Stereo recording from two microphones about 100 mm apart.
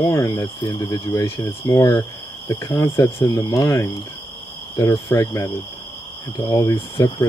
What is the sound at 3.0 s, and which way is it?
Speech, 35° left (ahead or behind).